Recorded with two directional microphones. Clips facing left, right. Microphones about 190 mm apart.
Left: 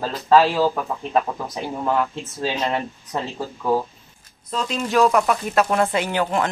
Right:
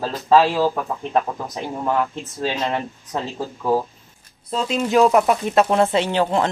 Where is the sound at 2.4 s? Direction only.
Centre (ahead or behind).